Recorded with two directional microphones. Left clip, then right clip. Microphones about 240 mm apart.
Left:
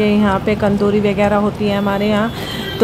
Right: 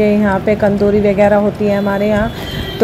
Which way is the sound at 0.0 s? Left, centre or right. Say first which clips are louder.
Right 2 dB; centre.